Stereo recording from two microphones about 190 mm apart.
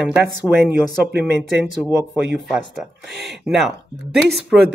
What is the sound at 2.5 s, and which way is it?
Speech, centre (ahead or behind).